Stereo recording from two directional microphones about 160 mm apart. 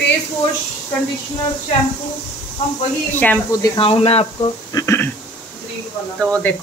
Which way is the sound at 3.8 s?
35° left (ahead or behind).